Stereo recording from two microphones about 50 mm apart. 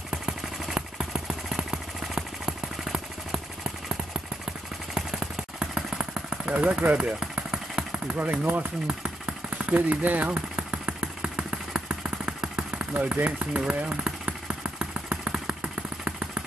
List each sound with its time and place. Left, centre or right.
0.1 s vehicle: centre
4.9 s a sound: centre
6.5 s speech: right
7.0 s vehicle: right
8.2 s speech: right
8.8 s engine: centre
10.2 s vehicle: right